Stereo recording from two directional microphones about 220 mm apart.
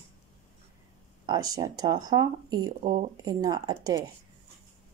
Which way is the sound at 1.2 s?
15° right (ahead or behind).